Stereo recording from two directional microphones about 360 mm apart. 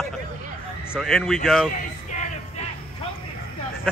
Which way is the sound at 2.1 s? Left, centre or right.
Centre.